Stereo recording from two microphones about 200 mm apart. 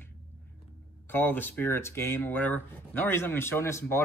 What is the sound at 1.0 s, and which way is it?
Speech, 10° left (ahead or behind).